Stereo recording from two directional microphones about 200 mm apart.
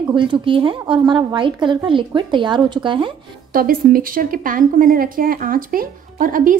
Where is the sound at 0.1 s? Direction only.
25° right (ahead or behind).